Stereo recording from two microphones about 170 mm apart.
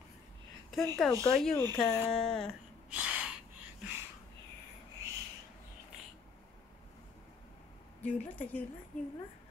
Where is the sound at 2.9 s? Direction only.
5° right (ahead or behind).